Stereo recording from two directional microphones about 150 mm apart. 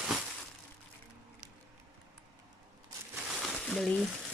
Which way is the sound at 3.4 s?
Centre (ahead or behind).